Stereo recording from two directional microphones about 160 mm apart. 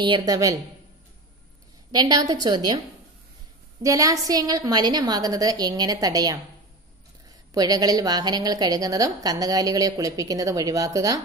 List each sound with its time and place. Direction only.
0.0 s a woman's voice: 25° right (ahead or behind)
1.9 s a woman's voice: 25° right (ahead or behind)
3.8 s a woman's voice: 20° right (ahead or behind)
7.5 s a woman's voice: 25° right (ahead or behind)